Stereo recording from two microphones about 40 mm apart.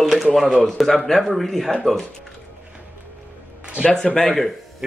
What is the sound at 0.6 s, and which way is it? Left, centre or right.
Speech, centre.